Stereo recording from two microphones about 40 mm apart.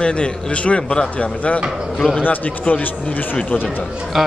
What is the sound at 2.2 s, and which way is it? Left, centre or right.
Speech, left.